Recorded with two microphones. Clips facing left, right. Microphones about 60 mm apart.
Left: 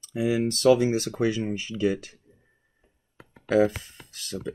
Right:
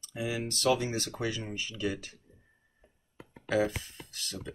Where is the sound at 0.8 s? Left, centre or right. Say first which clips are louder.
Left 9 dB; left.